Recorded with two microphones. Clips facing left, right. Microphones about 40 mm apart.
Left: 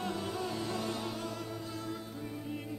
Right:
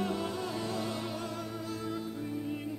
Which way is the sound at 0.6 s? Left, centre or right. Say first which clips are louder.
Right 1 dB; centre.